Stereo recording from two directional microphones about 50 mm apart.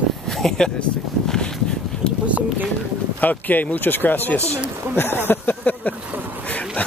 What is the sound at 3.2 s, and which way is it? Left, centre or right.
Speech, left.